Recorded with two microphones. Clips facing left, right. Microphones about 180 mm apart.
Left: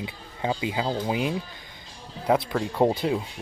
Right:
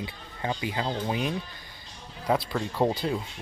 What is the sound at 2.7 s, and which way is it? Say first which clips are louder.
Speech: left 4 dB; 20° left (ahead or behind).